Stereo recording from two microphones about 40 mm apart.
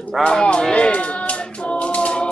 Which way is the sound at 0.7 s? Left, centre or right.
Left.